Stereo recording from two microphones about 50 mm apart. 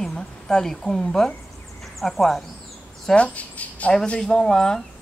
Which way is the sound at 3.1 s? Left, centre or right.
Left.